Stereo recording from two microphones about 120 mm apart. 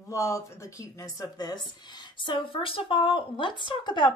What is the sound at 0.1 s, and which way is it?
Speech, 25° left (ahead or behind).